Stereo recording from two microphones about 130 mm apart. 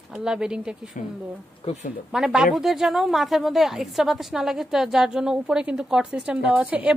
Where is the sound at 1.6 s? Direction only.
50° left (ahead or behind).